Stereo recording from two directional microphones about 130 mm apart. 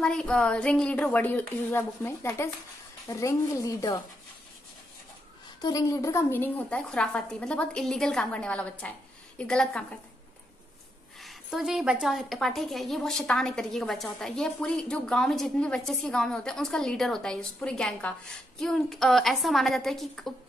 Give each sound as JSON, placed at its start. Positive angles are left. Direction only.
{"t": 0.0, "sound": "a woman's voice", "side_deg": 5}
{"t": 5.6, "sound": "a woman's voice", "side_deg": 30}
{"t": 11.1, "sound": "a woman's voice", "side_deg": 0}